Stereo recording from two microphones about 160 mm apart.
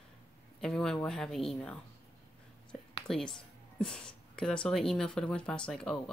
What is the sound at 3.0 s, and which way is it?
Speech, 5° left (ahead or behind).